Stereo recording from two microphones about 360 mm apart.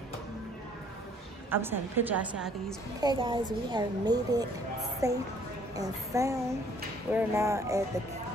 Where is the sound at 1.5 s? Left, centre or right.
Centre.